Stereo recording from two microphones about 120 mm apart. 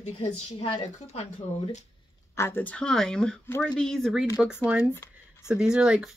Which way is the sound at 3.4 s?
20° left (ahead or behind).